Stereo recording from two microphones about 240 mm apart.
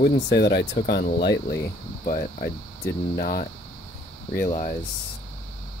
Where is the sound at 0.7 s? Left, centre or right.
Left.